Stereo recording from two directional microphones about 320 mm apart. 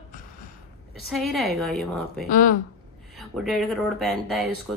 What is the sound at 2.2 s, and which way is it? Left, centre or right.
Speech, left.